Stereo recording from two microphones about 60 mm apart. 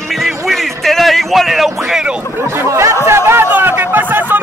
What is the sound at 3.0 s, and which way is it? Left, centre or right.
Speech, right.